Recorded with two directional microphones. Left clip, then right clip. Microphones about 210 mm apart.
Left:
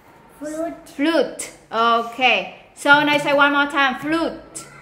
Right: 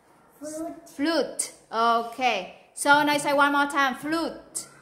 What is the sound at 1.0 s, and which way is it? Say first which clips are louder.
A woman's voice: left 7 dB; 5° right (ahead or behind).